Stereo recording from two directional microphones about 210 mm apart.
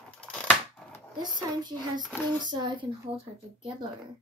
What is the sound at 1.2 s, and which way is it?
Speech, 20° right (ahead or behind).